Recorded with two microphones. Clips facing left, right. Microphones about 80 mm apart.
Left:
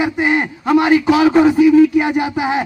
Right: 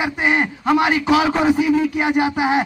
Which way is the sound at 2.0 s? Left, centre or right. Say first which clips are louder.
Even; centre.